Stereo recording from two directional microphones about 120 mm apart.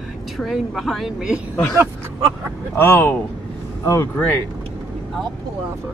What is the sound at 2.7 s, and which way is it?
Speech, 15° left (ahead or behind).